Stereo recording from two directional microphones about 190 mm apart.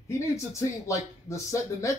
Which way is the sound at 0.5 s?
15° left (ahead or behind).